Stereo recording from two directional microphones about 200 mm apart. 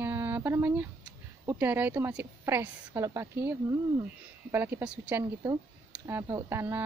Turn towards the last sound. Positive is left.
turn(degrees=-10)  # may be behind; listen again after turning